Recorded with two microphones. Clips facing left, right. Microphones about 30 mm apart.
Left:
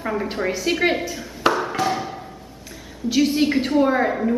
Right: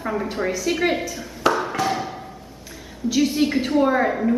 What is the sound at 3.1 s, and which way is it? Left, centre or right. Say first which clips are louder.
A woman's voice: left 1 dB; centre.